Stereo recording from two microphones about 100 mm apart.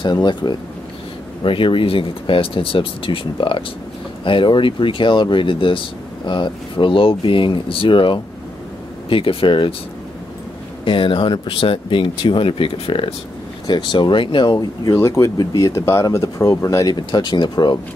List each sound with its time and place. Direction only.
0.0 s speech: 50° left (ahead or behind)
1.4 s speech: 60° left (ahead or behind)
10.9 s speech: 55° left (ahead or behind)
13.7 s speech: 50° left (ahead or behind)
14.9 s speech: 25° left (ahead or behind); by 17.7 s 45° left (ahead or behind)